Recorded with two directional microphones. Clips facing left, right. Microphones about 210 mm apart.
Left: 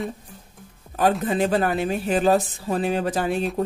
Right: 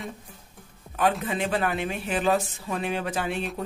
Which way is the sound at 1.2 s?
35° left (ahead or behind).